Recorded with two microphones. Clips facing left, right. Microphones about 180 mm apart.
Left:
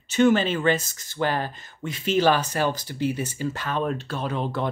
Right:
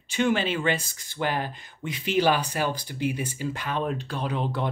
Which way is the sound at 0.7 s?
15° right (ahead or behind).